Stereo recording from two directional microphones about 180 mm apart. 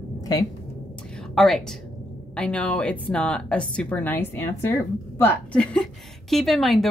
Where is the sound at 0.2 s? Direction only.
20° left (ahead or behind).